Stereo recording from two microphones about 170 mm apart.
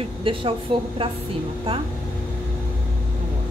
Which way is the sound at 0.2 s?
30° right (ahead or behind).